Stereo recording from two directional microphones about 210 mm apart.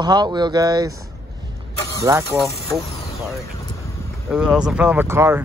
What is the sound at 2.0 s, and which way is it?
Speech, 15° right (ahead or behind).